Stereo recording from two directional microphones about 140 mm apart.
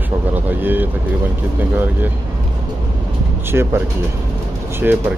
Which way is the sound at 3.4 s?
15° right (ahead or behind).